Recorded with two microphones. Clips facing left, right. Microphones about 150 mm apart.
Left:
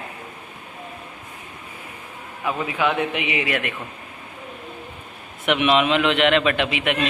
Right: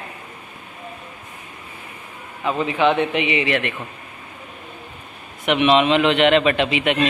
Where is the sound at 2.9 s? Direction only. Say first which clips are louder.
Right 4 dB; 5° left (ahead or behind).